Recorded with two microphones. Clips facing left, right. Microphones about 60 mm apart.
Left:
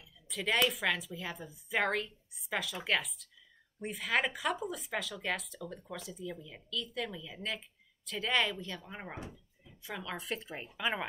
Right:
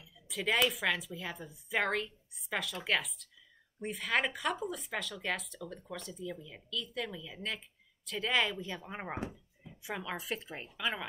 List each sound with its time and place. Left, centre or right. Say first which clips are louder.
0.3 s speech: even; centre
8.6 s speech: right 3 dB; centre
9.3 s a sound: right 3 dB; right
10.1 s speech: even; centre
10.8 s speech: left 2 dB; centre